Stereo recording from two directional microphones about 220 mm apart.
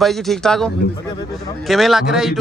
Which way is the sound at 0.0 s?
Centre (ahead or behind).